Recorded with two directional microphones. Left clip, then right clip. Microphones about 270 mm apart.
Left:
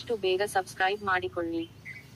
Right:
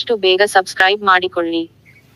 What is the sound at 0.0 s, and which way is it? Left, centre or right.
Speech, right.